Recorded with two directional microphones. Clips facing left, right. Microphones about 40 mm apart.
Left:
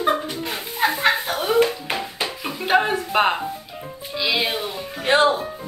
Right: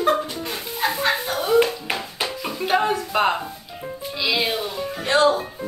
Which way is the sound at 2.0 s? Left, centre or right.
Centre.